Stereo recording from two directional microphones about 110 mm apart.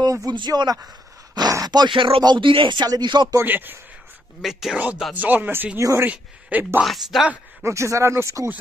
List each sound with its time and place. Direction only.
0.0 s a sound: 35° right (ahead or behind)
0.4 s speech: 40° right (ahead or behind)
3.3 s speech: 15° right (ahead or behind)
4.4 s speech: 5° right (ahead or behind)
6.8 s speech: centre (ahead or behind)
7.6 s speech: 25° right (ahead or behind)